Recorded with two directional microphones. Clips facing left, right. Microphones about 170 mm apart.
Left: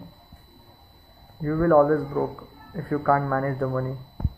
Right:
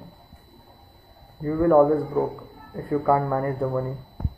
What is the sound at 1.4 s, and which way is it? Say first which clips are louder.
Speech: right 1 dB; 15° right (ahead or behind).